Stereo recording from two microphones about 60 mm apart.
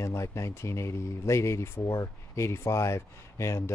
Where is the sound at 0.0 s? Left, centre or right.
Left.